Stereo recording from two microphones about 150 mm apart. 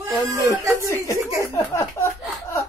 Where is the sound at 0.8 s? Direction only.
20° left (ahead or behind).